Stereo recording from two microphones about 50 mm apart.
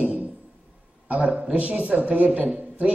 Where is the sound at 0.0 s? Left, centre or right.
Right.